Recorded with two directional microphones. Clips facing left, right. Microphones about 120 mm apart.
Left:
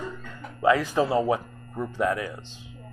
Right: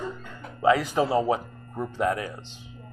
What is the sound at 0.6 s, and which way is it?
Speech, 20° right (ahead or behind).